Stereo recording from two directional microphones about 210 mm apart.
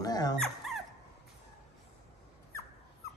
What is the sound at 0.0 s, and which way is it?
Dog, 20° left (ahead or behind).